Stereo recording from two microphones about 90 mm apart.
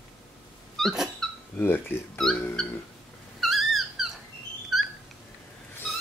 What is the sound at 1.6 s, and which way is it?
Speech, 25° left (ahead or behind).